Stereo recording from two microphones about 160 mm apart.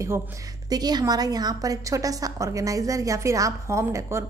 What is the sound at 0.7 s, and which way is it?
A woman's voice, 25° right (ahead or behind).